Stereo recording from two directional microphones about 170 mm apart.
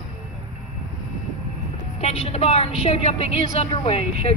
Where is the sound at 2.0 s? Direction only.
35° left (ahead or behind).